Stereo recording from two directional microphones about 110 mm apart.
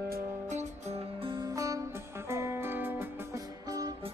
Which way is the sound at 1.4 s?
30° right (ahead or behind).